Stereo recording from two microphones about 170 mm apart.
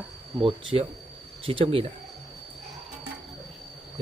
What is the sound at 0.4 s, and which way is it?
Speech, 30° right (ahead or behind).